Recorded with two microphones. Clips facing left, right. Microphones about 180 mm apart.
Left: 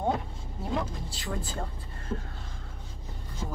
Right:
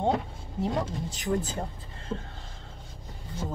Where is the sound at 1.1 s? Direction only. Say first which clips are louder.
Right 7 dB; 20° right (ahead or behind).